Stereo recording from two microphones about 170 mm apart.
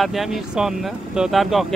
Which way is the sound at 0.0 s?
Centre (ahead or behind).